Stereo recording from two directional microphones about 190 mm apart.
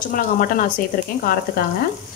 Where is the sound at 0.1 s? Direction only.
45° left (ahead or behind).